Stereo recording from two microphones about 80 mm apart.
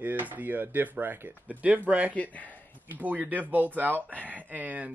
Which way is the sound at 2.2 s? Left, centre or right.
Centre.